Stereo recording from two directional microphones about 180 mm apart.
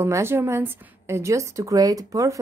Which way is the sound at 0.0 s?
15° right (ahead or behind).